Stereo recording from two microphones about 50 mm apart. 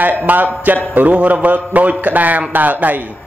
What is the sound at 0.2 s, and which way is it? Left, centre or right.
A man's voice, right.